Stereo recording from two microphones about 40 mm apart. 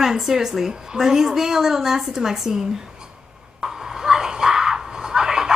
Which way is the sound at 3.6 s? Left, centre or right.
Centre.